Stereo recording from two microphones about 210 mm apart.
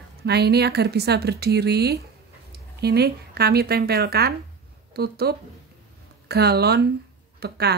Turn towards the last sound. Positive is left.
turn(degrees=-50)  # may be behind; listen again after turning